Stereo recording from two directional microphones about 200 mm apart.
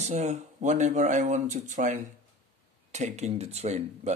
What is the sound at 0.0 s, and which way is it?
Speech, 35° right (ahead or behind).